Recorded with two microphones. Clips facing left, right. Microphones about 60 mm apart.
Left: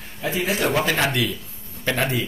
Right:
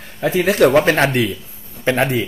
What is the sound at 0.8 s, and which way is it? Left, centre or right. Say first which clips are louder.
Speech: right 8 dB; right.